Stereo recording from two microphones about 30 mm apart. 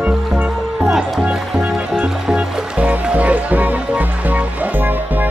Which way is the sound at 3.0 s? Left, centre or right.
Right.